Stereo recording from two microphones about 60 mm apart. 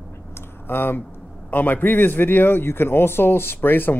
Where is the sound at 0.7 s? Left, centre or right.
Left.